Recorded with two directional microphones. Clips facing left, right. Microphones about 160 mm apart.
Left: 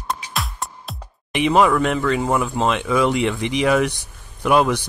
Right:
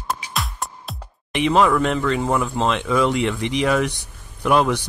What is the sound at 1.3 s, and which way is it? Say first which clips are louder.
Speech: left 1 dB; 10° left (ahead or behind).